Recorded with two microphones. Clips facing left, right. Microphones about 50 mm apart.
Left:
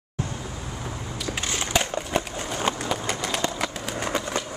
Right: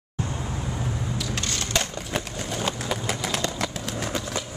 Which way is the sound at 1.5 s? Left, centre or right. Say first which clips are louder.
Left 5 dB; centre.